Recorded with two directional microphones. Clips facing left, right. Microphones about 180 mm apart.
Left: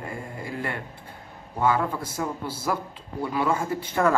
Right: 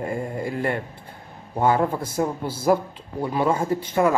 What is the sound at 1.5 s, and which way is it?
Mantra, 35° right (ahead or behind).